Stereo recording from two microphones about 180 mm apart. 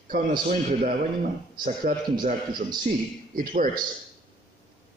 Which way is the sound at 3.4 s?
50° right (ahead or behind).